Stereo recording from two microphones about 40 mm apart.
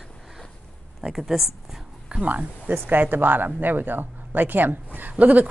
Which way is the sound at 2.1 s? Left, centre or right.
Right.